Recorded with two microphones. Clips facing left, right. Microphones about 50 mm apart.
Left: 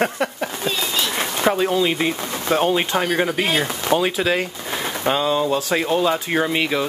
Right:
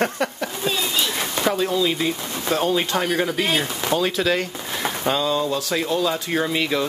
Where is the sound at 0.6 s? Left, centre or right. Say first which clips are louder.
Even; centre.